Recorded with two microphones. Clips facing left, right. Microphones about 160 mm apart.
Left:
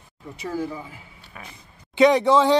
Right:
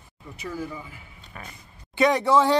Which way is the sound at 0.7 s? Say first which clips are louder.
Left 3 dB; 5° left (ahead or behind).